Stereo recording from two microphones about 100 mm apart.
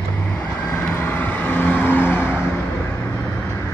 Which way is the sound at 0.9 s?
20° left (ahead or behind).